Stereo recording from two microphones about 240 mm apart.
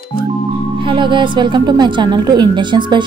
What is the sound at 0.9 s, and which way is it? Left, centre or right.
A woman's voice, centre.